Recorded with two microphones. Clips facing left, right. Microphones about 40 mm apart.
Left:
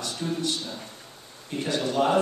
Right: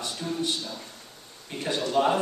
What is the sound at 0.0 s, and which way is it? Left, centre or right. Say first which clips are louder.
Speech: left 1 dB; centre.